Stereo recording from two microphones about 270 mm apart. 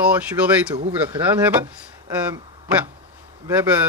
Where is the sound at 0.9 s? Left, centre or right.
Centre.